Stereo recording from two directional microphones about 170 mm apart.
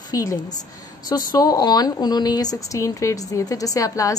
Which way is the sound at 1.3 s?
20° left (ahead or behind).